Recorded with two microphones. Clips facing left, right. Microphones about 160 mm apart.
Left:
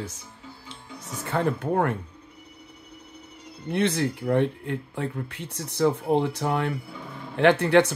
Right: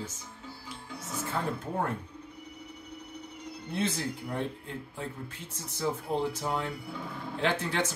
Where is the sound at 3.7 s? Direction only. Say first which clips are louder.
Left 8 dB; 70° left (ahead or behind).